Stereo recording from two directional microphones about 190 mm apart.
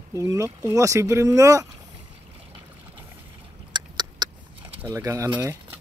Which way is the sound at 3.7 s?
25° right (ahead or behind).